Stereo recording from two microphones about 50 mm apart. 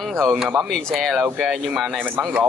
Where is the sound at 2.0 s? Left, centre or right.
Right.